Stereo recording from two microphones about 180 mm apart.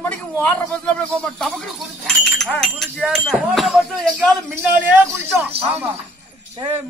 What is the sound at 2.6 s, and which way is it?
Speech, centre (ahead or behind).